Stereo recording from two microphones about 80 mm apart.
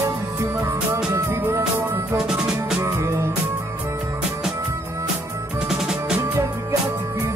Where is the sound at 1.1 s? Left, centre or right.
Right.